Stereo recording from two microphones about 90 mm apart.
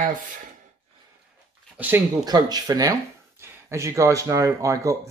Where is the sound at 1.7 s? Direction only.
20° right (ahead or behind).